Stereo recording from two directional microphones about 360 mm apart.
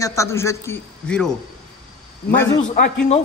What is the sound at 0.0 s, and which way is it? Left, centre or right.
Speech, centre.